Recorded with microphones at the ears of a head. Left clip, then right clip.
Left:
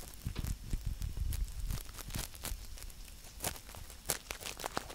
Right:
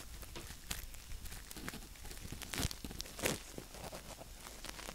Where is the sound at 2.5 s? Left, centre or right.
Right.